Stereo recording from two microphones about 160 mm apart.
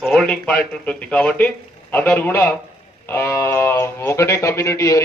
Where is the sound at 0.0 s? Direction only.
5° left (ahead or behind).